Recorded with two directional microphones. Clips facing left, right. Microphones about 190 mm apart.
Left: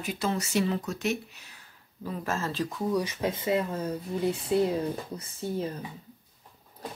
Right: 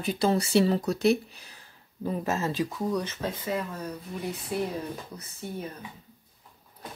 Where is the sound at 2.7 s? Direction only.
5° left (ahead or behind); by 5.9 s 30° left (ahead or behind).